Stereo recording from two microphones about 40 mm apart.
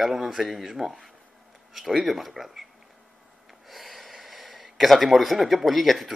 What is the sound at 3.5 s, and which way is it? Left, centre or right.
Gasp, centre.